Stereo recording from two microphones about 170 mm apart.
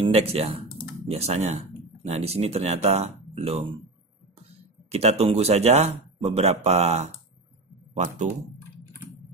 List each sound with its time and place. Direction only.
0.0 s speech: 35° right (ahead or behind)
4.9 s speech: 40° right (ahead or behind)